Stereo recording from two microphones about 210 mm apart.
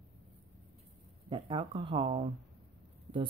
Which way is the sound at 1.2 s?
25° right (ahead or behind).